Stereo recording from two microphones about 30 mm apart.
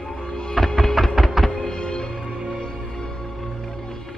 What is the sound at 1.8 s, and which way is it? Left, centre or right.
Music, left.